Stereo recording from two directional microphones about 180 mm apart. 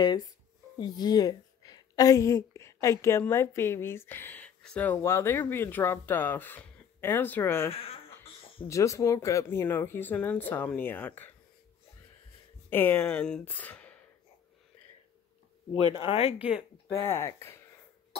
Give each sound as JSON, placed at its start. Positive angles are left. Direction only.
{"t": 0.7, "sound": "a woman's voice", "side_deg": 25}
{"t": 12.6, "sound": "speech", "side_deg": 10}
{"t": 15.9, "sound": "speech", "side_deg": 30}
{"t": 17.0, "sound": "speech", "side_deg": 15}